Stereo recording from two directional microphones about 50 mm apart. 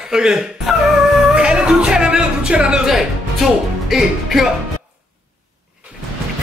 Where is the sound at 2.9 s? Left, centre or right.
Centre.